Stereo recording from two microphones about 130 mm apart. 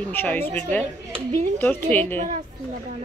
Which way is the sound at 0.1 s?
15° left (ahead or behind).